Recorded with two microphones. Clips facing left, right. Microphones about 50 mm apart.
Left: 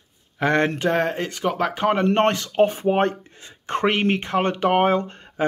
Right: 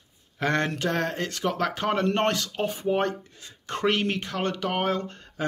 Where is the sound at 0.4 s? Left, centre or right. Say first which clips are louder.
Left 5 dB; centre.